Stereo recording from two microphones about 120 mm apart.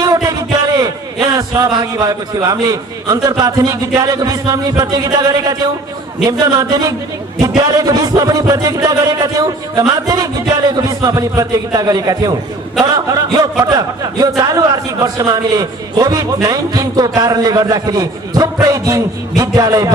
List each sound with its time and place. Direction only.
0.0 s a man's voice: 30° right (ahead or behind)